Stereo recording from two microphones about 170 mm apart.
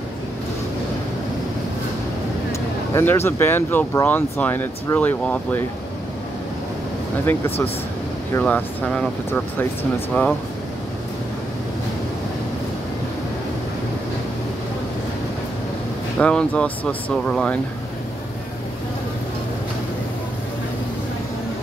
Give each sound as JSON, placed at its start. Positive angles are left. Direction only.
{"t": 2.9, "sound": "speech", "side_deg": 15}
{"t": 7.2, "sound": "speech", "side_deg": 15}
{"t": 16.2, "sound": "speech", "side_deg": 5}